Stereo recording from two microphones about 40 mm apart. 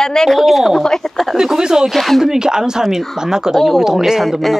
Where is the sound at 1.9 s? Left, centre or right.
Centre.